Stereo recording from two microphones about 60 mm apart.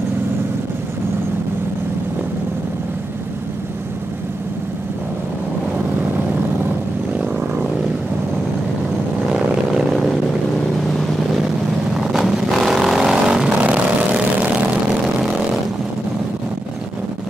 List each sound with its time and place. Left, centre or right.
12.0 s vehicle: centre; by 14.2 s right